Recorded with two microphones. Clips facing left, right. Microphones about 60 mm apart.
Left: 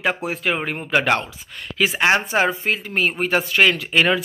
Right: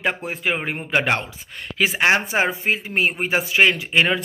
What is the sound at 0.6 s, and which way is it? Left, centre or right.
A man's voice, right.